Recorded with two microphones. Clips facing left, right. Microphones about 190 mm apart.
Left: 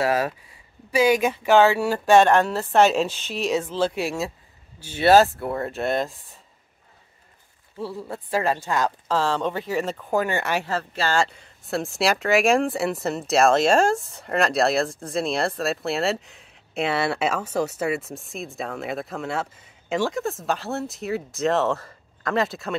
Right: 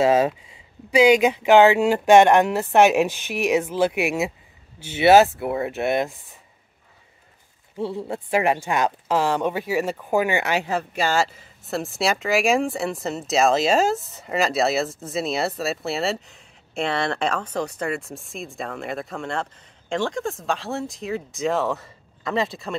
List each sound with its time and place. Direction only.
0.0 s speech: 20° right (ahead or behind)
7.7 s speech: 20° right (ahead or behind); by 22.8 s centre (ahead or behind)